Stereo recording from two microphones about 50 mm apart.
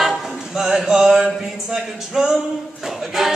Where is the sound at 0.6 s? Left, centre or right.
Centre.